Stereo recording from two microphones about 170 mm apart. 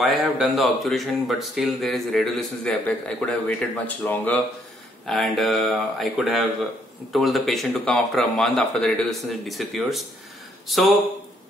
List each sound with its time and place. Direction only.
0.0 s a man's voice: centre (ahead or behind)